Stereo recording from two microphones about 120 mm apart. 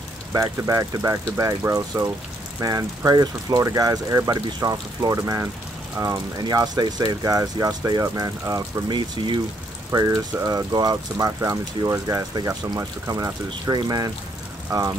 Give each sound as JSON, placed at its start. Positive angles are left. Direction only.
{"t": 0.3, "sound": "speech", "side_deg": -25}
{"t": 9.8, "sound": "speech", "side_deg": -30}